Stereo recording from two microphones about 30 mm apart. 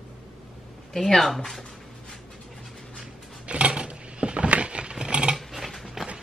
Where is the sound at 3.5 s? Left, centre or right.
Right.